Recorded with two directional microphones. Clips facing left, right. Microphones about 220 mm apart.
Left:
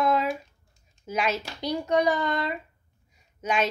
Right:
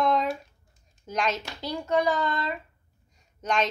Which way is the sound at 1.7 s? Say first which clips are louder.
Left 1 dB; 20° left (ahead or behind).